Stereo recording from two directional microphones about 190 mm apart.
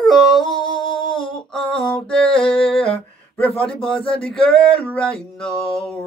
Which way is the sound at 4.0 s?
30° left (ahead or behind).